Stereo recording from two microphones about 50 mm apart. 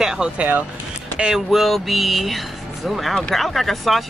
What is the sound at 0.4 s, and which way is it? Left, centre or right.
Speech, right.